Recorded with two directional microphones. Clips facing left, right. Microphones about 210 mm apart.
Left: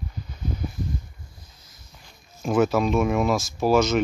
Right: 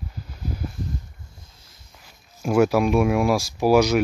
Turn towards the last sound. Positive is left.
turn(degrees=-15)  # may be behind; listen again after turning